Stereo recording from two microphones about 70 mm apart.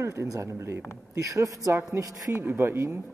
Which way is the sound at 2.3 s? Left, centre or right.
Right.